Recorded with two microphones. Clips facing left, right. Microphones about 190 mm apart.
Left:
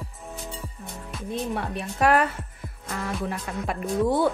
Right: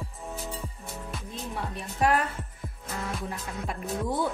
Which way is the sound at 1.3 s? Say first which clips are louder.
Left 8 dB; 60° left (ahead or behind).